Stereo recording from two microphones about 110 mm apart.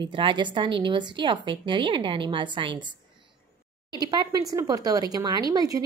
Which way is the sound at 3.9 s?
40° right (ahead or behind).